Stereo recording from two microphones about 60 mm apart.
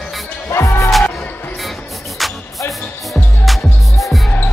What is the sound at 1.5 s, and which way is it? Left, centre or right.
Music, centre.